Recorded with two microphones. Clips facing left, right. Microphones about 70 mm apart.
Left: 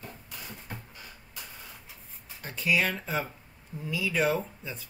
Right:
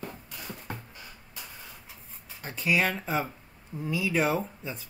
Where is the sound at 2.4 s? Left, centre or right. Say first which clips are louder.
Right 1 dB; centre.